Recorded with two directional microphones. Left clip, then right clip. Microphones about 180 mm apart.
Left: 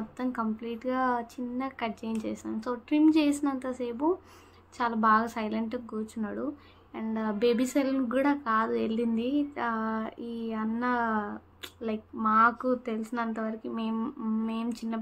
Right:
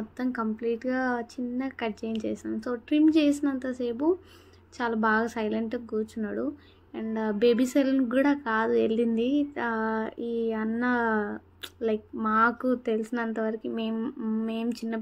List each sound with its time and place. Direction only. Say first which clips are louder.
0.2 s a woman's voice: right 3 dB; 15° right (ahead or behind)